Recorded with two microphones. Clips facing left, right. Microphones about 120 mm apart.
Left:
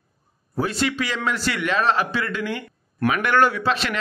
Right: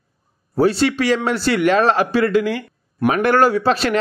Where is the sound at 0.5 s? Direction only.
35° right (ahead or behind).